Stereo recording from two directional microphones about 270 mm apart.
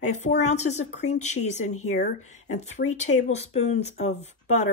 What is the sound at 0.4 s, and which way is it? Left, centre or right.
Speech, left.